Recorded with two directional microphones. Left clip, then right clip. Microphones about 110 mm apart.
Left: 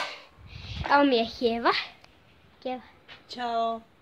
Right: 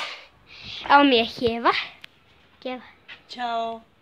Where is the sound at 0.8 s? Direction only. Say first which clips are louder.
Right 5 dB; 70° right (ahead or behind).